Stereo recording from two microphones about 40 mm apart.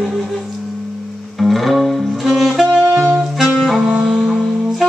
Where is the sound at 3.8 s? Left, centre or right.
Right.